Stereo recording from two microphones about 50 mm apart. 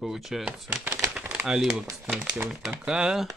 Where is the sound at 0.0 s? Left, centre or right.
Centre.